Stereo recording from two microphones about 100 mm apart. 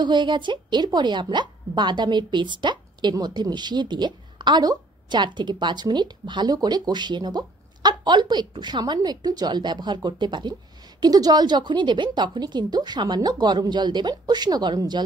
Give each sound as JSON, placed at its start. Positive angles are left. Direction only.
{"t": 0.0, "sound": "a woman's voice", "side_deg": -50}